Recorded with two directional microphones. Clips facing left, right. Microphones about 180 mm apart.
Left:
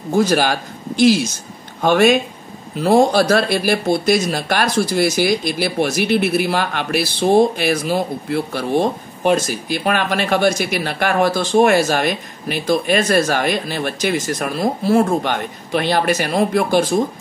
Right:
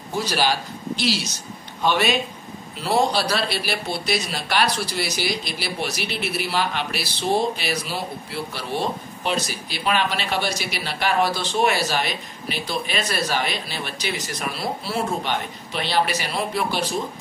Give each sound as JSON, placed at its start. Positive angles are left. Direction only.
{"t": 0.1, "sound": "a man's voice", "side_deg": 50}